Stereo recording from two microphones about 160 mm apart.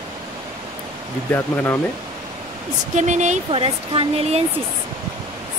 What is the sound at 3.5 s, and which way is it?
Speech, 35° right (ahead or behind).